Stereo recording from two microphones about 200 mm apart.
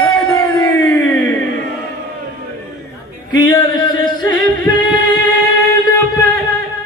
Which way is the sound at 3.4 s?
20° left (ahead or behind).